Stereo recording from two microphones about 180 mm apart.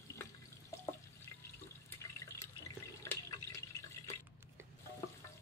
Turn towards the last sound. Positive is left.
turn(degrees=20)  # may be behind; listen again after turning